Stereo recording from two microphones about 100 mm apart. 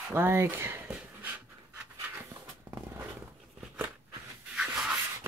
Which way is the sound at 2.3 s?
20° right (ahead or behind).